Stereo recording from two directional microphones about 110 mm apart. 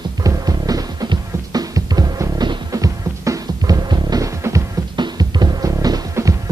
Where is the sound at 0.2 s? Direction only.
35° right (ahead or behind).